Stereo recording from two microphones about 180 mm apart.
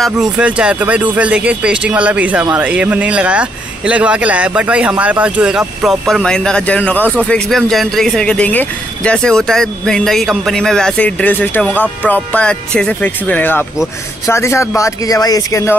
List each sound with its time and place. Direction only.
0.0 s speech: 5° right (ahead or behind); by 15.7 s 20° left (ahead or behind)